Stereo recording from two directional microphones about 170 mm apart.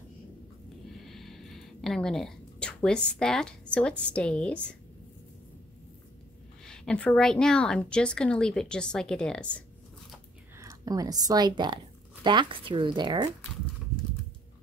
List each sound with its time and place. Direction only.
0.9 s speech: centre (ahead or behind)
6.6 s a woman's voice: 5° left (ahead or behind)
10.6 s speech: 20° right (ahead or behind)